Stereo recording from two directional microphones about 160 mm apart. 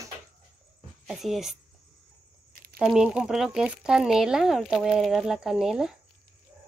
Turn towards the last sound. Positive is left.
turn(degrees=-5)  # may be behind; listen again after turning